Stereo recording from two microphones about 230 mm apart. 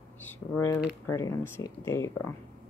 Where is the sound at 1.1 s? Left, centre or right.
Centre.